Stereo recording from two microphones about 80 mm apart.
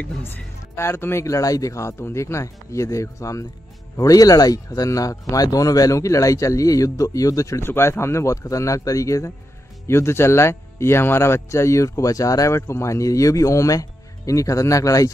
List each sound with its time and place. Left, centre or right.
0.7 s speech: left